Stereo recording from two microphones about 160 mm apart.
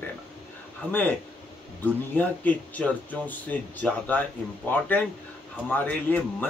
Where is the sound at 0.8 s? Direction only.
10° left (ahead or behind).